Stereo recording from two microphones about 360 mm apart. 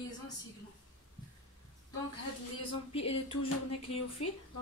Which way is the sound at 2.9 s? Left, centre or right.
Centre.